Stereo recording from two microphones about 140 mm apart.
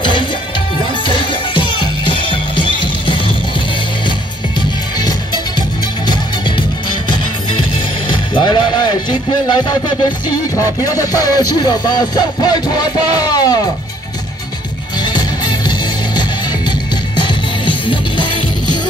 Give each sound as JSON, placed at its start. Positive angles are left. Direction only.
{"t": 0.0, "sound": "music", "side_deg": 35}
{"t": 4.6, "sound": "music", "side_deg": 30}
{"t": 8.1, "sound": "speech", "side_deg": 35}
{"t": 15.0, "sound": "music", "side_deg": 30}
{"t": 17.2, "sound": "music", "side_deg": 35}